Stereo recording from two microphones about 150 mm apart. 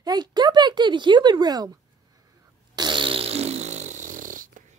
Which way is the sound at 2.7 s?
30° right (ahead or behind).